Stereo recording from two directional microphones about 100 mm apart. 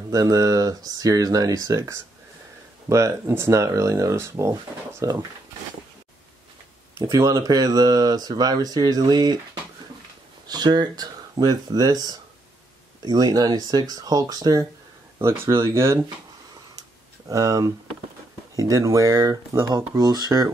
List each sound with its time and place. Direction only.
0.1 s speech: 35° right (ahead or behind)
7.0 s speech: 35° right (ahead or behind)
10.4 s speech: 45° right (ahead or behind)
15.1 s speech: 25° right (ahead or behind)
17.3 s speech: 35° right (ahead or behind)